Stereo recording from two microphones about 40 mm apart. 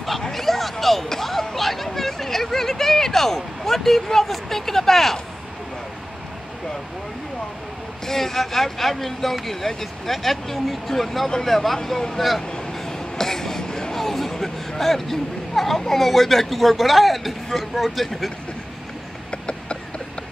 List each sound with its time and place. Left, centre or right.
0.3 s speech: centre
8.1 s a man's voice: centre
12.4 s a sound: centre
13.9 s music: centre
14.8 s a man's voice: centre
19.3 s a sound: left